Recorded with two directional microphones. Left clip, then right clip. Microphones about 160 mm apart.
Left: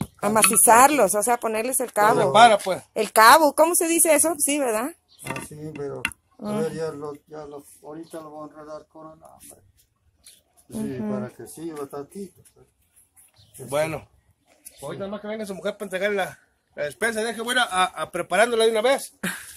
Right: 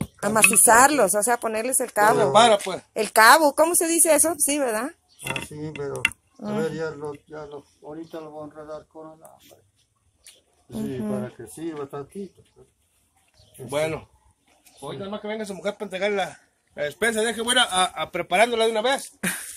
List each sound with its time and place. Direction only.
0.6 s speech: 20° left (ahead or behind)
2.1 s speech: 55° left (ahead or behind)
2.9 s a woman's voice: 20° left (ahead or behind)
5.4 s speech: 15° right (ahead or behind)
6.3 s speech: 15° left (ahead or behind)
6.6 s speech: 10° right (ahead or behind)
10.7 s a man's voice: 5° left (ahead or behind)
11.3 s a man's voice: 5° right (ahead or behind)
13.7 s speech: 65° left (ahead or behind)
14.8 s speech: 50° left (ahead or behind)
15.6 s speech: 35° left (ahead or behind)
16.7 s a man's voice: 10° left (ahead or behind)
18.3 s a woman's voice: 20° left (ahead or behind)
18.6 s speech: 40° left (ahead or behind)